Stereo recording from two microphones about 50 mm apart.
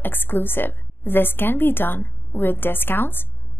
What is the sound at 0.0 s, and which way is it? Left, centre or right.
A woman's voice, left.